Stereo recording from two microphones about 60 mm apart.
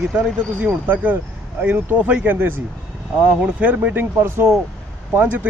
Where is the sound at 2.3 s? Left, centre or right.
Right.